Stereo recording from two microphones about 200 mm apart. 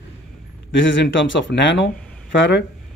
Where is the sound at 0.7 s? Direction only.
65° left (ahead or behind).